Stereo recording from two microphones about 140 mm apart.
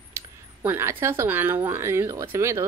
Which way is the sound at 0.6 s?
20° right (ahead or behind).